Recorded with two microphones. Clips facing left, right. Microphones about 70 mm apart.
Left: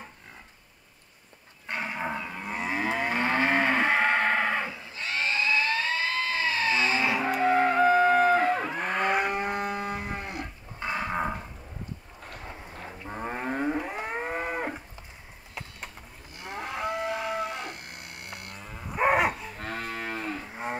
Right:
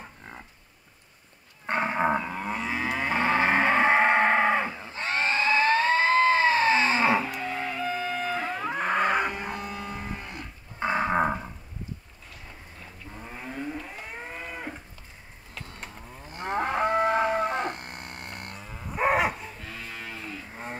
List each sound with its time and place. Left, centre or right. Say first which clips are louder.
1.7 s cattle: right 7 dB; right
2.5 s moo: left 2 dB; left
3.0 s livestock: right 4 dB; right
4.6 s goat: right 3 dB; right
7.2 s music: left 9 dB; left
8.6 s vehicle: right 2 dB; right
9.4 s cattle: left 4 dB; left
10.3 s cattle: left 3 dB; right
12.3 s a sound: left 5 dB; left
13.1 s livestock: left 7 dB; left
16.3 s livestock: right 8 dB; right
18.6 s cattle: left 1 dB; centre
19.6 s cattle: left 5 dB; left